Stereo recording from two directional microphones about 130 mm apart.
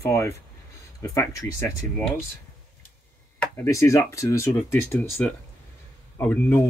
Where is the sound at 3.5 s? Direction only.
20° left (ahead or behind).